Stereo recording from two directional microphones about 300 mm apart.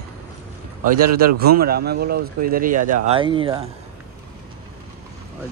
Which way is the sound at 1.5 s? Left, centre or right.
Right.